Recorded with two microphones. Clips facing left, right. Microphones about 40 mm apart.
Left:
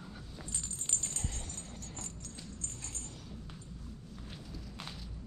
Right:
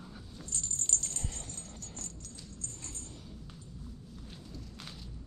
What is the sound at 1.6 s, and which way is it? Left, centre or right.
Dog, left.